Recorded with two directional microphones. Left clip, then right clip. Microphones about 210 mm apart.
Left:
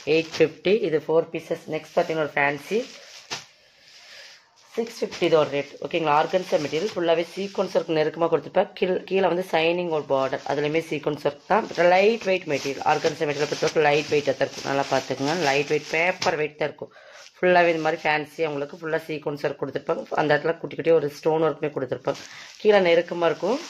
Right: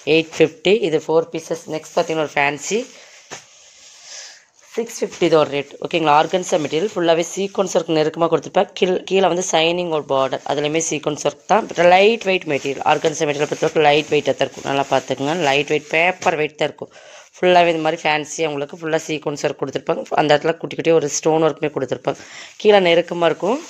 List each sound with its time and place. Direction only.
0.0 s speech: 35° right (ahead or behind)
4.7 s speech: 50° right (ahead or behind)